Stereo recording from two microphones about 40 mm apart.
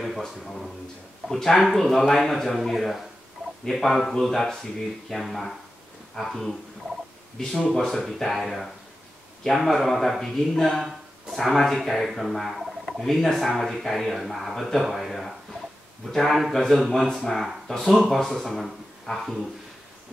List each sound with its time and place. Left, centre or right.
0.0 s a man's voice: centre
9.4 s speech: centre
12.1 s speech: centre
12.5 s a sound: centre
13.0 s speech: centre